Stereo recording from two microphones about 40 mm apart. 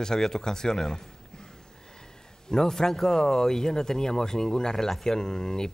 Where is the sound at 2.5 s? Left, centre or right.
Centre.